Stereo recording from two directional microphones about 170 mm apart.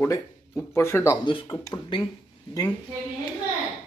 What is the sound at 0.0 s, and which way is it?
Speech, 15° left (ahead or behind).